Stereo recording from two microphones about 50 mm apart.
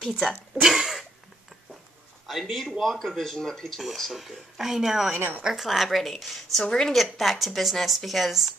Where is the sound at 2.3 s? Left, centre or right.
Centre.